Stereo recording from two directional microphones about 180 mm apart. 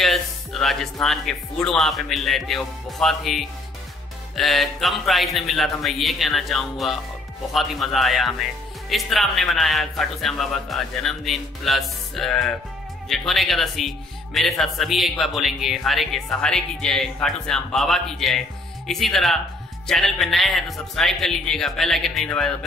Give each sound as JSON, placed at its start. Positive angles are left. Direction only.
{"t": 0.0, "sound": "speech", "side_deg": 0}